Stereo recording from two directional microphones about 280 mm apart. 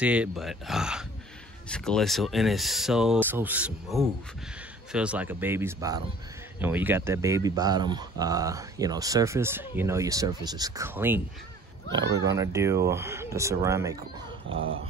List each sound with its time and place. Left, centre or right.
0.0 s speech: centre
12.4 s speech: centre
14.5 s speech: right